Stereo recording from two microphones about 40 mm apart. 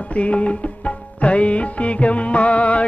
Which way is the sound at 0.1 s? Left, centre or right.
Left.